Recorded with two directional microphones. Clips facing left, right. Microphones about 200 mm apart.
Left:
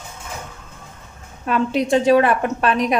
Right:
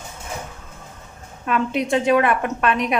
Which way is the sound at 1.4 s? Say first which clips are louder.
Left 2 dB; 35° left (ahead or behind).